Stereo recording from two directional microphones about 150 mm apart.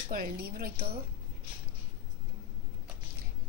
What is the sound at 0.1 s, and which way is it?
Speech, 75° right (ahead or behind).